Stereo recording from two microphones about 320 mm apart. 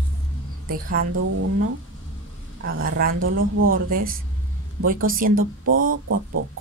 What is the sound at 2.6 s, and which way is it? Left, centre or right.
Speech, right.